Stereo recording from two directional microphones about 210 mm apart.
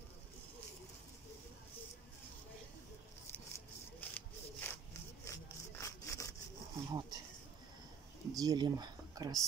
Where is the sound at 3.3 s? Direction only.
10° left (ahead or behind).